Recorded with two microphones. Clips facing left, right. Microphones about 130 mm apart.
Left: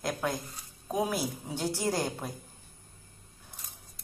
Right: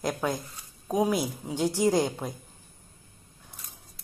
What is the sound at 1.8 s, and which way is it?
Speech, 15° right (ahead or behind).